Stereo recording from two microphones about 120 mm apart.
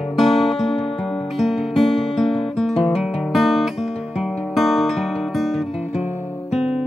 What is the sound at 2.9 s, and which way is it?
Guitar, centre (ahead or behind).